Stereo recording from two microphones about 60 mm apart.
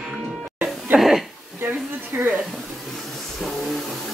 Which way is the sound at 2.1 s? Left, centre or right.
Right.